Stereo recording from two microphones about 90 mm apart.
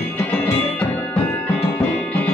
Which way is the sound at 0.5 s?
15° left (ahead or behind).